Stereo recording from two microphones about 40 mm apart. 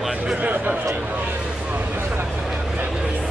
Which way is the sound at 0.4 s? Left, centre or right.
Right.